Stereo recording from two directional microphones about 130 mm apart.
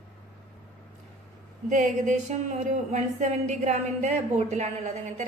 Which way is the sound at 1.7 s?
75° right (ahead or behind).